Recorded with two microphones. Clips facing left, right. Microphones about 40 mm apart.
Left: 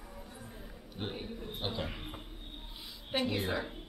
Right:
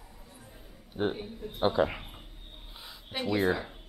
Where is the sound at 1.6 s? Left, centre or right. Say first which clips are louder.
Right 12 dB; centre.